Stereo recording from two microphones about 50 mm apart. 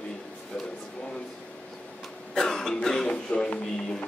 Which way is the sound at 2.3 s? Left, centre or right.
Centre.